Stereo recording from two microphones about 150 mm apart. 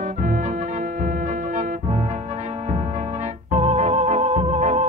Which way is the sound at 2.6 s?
50° right (ahead or behind).